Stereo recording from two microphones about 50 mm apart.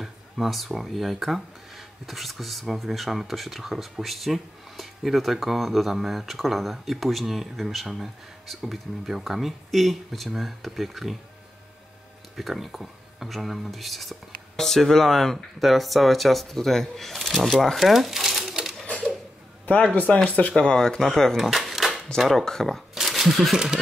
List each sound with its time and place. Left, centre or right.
0.0 s speech: centre
12.4 s speech: centre
20.2 s speech: left
20.5 s speech: centre
21.4 s a sound: centre
22.3 s speech: centre
22.9 s a sound: centre
23.5 s speech: centre